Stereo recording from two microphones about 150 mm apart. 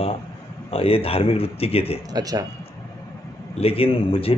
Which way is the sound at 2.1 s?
25° right (ahead or behind).